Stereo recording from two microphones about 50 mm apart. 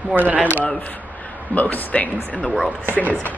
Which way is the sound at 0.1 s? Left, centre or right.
Right.